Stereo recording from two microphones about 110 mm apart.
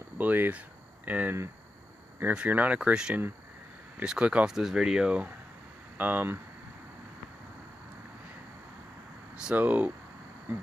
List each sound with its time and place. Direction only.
0.2 s speech: 15° right (ahead or behind)
9.4 s speech: 10° right (ahead or behind)